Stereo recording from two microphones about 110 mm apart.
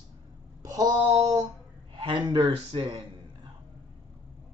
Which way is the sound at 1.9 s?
45° right (ahead or behind).